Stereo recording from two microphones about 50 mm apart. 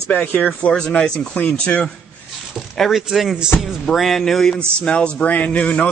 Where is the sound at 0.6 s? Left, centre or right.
Centre.